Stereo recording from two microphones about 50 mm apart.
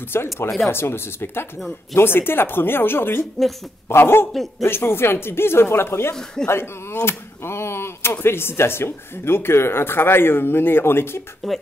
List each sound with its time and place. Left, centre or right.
0.1 s speech: left
4.3 s speech: centre
4.6 s speech: left